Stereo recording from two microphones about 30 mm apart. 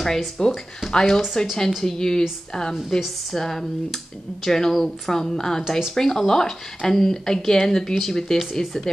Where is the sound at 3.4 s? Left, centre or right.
Centre.